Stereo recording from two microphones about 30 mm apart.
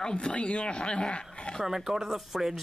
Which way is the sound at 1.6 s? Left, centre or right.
Centre.